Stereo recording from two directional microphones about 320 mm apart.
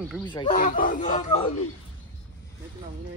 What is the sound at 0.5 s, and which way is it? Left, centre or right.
Speech, left.